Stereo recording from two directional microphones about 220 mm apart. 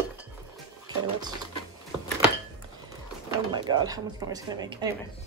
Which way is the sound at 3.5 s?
20° right (ahead or behind).